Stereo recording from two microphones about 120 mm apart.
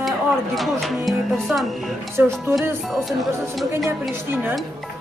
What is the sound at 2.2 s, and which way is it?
Speech, 20° right (ahead or behind).